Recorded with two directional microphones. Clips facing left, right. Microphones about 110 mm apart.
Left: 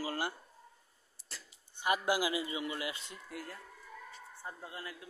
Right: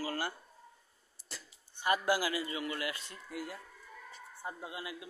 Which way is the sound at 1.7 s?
15° left (ahead or behind).